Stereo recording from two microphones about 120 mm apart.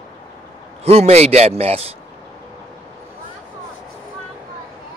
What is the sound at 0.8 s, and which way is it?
A man's voice, 60° right (ahead or behind).